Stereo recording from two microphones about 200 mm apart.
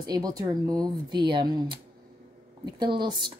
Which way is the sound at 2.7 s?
20° right (ahead or behind).